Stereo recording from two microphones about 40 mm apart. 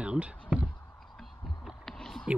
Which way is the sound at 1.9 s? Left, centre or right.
Centre.